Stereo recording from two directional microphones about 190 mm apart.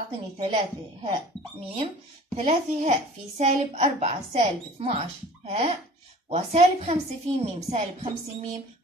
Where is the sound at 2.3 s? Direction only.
35° right (ahead or behind).